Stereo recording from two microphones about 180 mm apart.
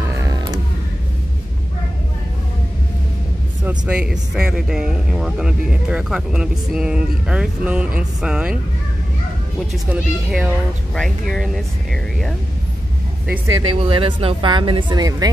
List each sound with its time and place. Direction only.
0.1 s a sound: 20° right (ahead or behind)
3.6 s speech: 5° right (ahead or behind)
9.7 s speech: 5° right (ahead or behind)
13.6 s speech: 30° right (ahead or behind)